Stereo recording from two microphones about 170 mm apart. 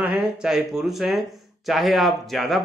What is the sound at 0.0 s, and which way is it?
Speech, 5° right (ahead or behind).